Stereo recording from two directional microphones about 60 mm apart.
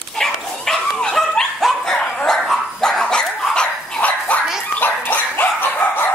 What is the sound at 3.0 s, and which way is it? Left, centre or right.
Dog, centre.